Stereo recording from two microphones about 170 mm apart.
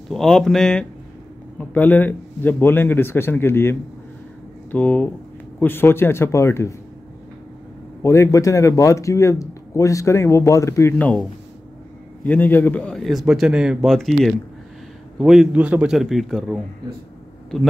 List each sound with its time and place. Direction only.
0.1 s a man's voice: centre (ahead or behind)
8.0 s a man's voice: 15° left (ahead or behind); by 16.6 s centre (ahead or behind)